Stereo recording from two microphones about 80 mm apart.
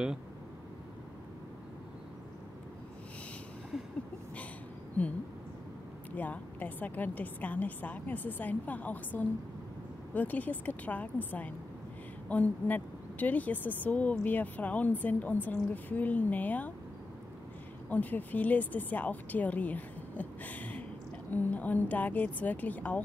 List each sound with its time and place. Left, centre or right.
5.0 s a sound: centre
6.1 s a woman's voice: centre
17.8 s a woman's voice: left